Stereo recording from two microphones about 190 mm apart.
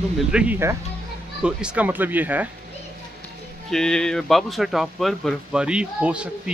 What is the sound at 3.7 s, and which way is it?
Speech, 5° left (ahead or behind).